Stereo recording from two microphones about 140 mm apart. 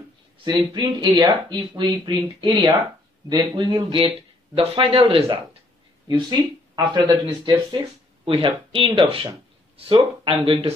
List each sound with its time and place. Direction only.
0.4 s speech: 30° right (ahead or behind)